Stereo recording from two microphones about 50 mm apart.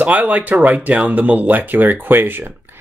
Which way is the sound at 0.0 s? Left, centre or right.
Right.